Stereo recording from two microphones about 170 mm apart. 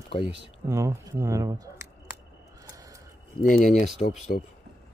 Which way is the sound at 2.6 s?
20° right (ahead or behind).